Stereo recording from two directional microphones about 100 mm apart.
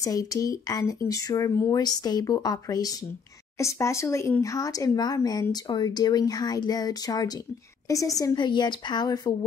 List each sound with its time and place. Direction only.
0.0 s speech: 35° left (ahead or behind)
8.4 s speech: 50° left (ahead or behind)